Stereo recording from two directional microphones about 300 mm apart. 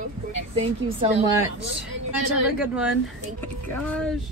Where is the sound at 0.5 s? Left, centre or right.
Centre.